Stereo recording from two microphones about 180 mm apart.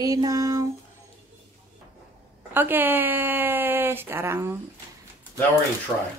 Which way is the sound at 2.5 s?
10° right (ahead or behind).